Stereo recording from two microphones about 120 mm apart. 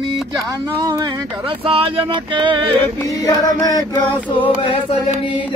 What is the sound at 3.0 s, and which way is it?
Music, 30° left (ahead or behind).